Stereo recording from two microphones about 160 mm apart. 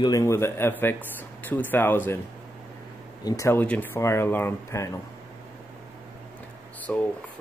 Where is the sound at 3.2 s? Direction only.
20° left (ahead or behind).